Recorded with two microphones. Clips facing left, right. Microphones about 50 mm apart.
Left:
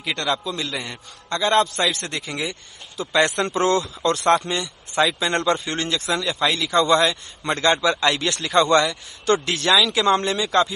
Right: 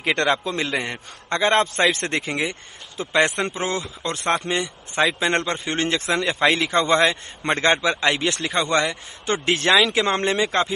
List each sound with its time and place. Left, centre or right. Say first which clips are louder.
0.0 s a man's voice: right 4 dB; right